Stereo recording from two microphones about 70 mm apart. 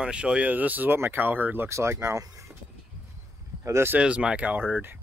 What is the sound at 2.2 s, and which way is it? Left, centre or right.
Vehicle, right.